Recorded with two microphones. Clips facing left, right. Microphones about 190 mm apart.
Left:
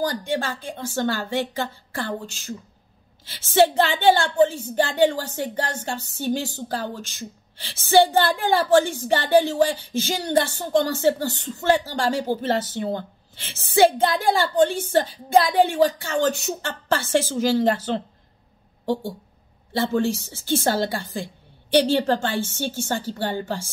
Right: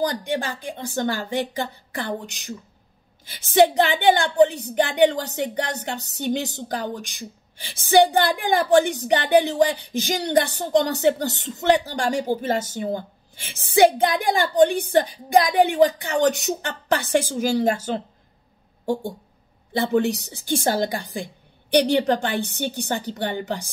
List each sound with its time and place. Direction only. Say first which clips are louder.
0.0 s a woman's voice: even; 20° right (ahead or behind)
19.8 s a woman's voice: right 1 dB; 20° right (ahead or behind)